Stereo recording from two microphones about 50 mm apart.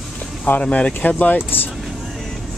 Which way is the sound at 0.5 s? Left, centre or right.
Left.